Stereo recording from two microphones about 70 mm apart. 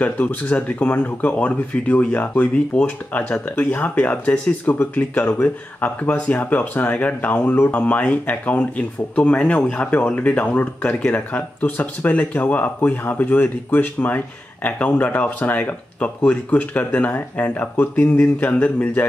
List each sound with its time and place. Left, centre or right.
0.0 s speech: left
7.7 s speech: centre